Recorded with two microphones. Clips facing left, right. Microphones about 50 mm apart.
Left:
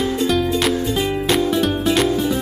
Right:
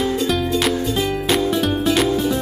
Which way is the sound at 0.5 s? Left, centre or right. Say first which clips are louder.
Even; centre.